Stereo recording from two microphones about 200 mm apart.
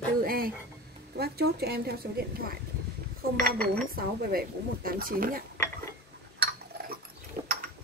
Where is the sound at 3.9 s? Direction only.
45° right (ahead or behind).